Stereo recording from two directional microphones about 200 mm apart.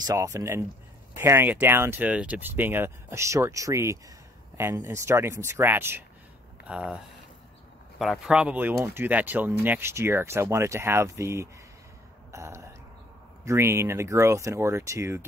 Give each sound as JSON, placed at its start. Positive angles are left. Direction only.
{"t": 0.0, "sound": "speech", "side_deg": -15}
{"t": 8.0, "sound": "speech", "side_deg": 0}